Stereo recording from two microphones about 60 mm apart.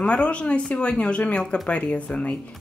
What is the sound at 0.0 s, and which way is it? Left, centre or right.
A woman's voice, centre.